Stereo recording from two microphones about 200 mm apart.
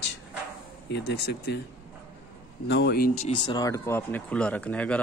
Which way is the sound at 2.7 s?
55° left (ahead or behind).